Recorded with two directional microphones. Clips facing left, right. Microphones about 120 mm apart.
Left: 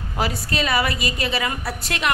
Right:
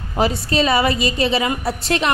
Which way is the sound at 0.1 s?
25° right (ahead or behind).